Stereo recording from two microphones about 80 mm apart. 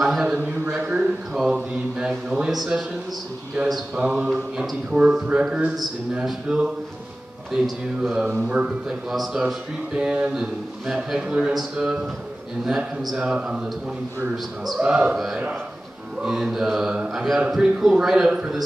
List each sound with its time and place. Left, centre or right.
0.0 s a sound: centre
0.7 s speech: centre
5.8 s speech: centre
7.5 s speech: centre
8.4 s speech: centre
9.1 s speech: centre